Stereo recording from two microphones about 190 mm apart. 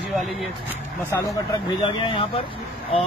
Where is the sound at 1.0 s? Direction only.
15° left (ahead or behind).